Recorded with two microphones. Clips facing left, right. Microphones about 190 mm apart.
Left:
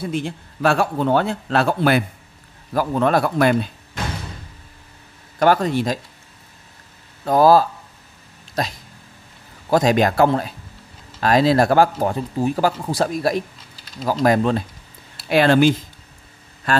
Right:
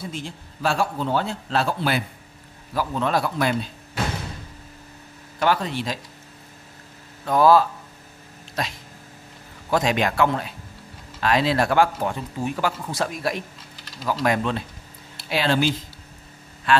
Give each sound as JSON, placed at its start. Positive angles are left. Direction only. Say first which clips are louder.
{"t": 0.0, "sound": "a man's voice", "louder": "left 8 dB", "side_deg": 60}
{"t": 5.4, "sound": "a man's voice", "louder": "left 6 dB", "side_deg": 45}
{"t": 7.2, "sound": "speech", "louder": "left 3 dB", "side_deg": 35}
{"t": 15.2, "sound": "speech", "louder": "left 7 dB", "side_deg": 55}
{"t": 16.7, "sound": "speech", "louder": "even", "side_deg": 40}